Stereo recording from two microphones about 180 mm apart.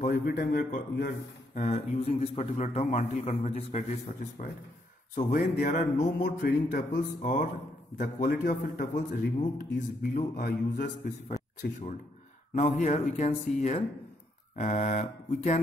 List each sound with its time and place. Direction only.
0.0 s a man's voice: 50° left (ahead or behind)
5.1 s a man's voice: 50° left (ahead or behind)
12.8 s a man's voice: 40° left (ahead or behind)